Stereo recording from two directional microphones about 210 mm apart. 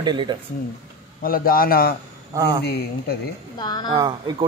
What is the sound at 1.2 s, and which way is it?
Speech, 45° left (ahead or behind).